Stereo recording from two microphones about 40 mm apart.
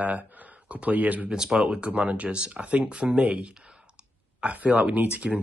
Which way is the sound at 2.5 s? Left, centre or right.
Right.